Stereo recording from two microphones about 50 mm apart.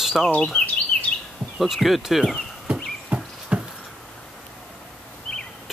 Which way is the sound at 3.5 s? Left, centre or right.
Right.